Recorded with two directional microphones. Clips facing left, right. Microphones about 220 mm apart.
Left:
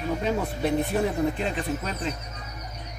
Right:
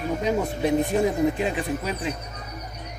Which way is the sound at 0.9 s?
15° right (ahead or behind).